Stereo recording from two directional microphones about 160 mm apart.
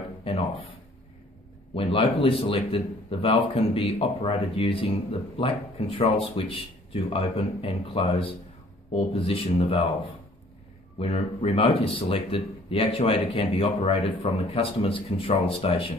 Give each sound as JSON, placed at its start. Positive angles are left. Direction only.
{"t": 0.3, "sound": "a sound", "side_deg": 35}
{"t": 1.8, "sound": "speech", "side_deg": 35}
{"t": 11.0, "sound": "speech", "side_deg": 40}